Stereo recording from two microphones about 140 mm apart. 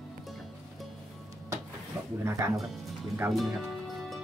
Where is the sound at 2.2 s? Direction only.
20° right (ahead or behind).